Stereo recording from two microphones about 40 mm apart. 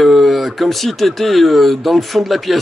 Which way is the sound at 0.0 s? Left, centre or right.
Centre.